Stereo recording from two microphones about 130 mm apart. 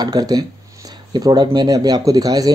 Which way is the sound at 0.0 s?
30° right (ahead or behind).